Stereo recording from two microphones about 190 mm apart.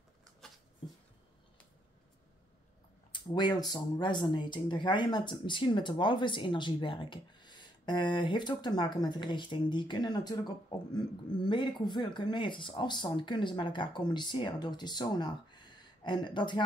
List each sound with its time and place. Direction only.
3.1 s speech: 20° left (ahead or behind)